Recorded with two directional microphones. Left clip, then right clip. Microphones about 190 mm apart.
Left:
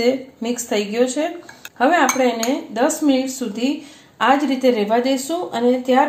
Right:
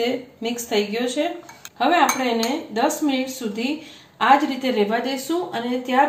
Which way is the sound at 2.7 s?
25° left (ahead or behind).